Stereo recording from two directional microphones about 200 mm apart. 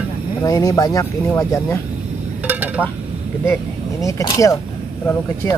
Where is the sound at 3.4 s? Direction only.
15° left (ahead or behind).